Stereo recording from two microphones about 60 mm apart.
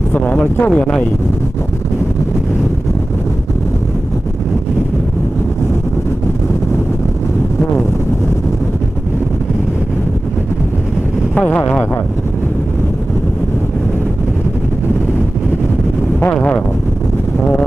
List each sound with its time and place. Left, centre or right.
0.2 s speech: left
11.3 s speech: left
16.3 s vehicle: left